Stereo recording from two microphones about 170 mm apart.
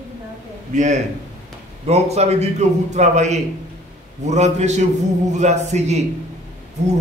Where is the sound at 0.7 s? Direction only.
45° right (ahead or behind).